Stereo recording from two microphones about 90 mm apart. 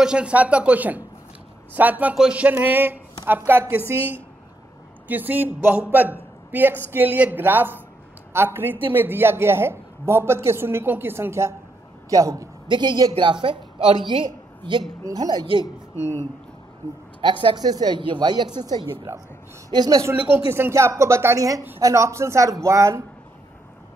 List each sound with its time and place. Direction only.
0.0 s a woman's voice: 10° right (ahead or behind); by 4.0 s 30° right (ahead or behind)
5.0 s a woman's voice: 20° right (ahead or behind); by 12.4 s 40° right (ahead or behind)
12.6 s a woman's voice: 55° right (ahead or behind)
15.6 s speech: 30° left (ahead or behind)
17.2 s a woman's voice: 65° right (ahead or behind); by 20.0 s 50° right (ahead or behind)
20.2 s speech: 25° right (ahead or behind)